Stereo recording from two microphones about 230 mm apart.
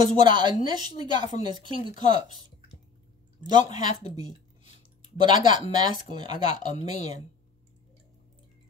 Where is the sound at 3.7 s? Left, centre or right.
Centre.